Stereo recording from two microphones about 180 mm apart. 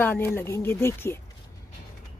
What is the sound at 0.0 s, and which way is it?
Speech, 10° left (ahead or behind).